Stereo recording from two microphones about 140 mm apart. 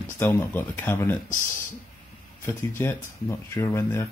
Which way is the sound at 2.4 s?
15° left (ahead or behind).